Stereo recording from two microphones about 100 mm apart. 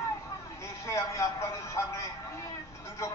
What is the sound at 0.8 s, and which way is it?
A man's voice, 30° left (ahead or behind).